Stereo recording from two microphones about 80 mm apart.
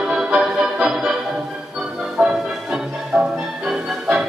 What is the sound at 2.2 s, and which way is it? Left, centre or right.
Music, centre.